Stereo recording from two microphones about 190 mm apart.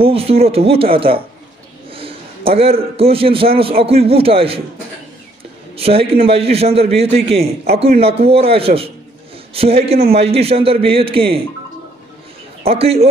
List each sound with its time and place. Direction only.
0.0 s a man's voice: 30° right (ahead or behind)
5.8 s a man's voice: 30° right (ahead or behind)
12.6 s a man's voice: 30° right (ahead or behind)